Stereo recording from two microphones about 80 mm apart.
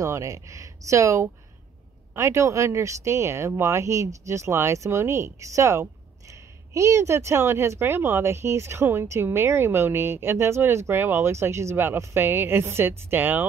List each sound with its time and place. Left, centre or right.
0.0 s speech: right